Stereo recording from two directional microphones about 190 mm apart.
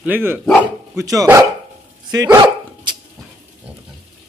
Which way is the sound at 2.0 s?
20° right (ahead or behind).